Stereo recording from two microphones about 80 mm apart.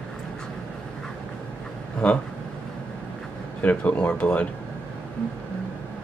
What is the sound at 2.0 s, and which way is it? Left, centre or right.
Speech, centre.